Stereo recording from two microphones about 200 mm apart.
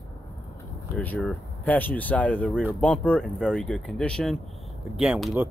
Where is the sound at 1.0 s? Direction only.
5° left (ahead or behind).